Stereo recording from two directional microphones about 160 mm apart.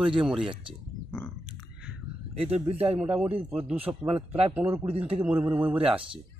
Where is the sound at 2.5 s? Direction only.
40° right (ahead or behind).